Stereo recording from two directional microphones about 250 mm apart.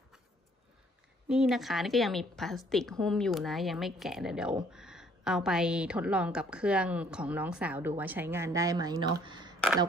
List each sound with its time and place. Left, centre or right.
1.3 s speech: centre